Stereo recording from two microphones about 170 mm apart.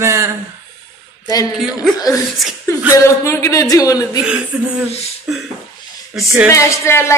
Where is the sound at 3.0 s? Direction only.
15° left (ahead or behind).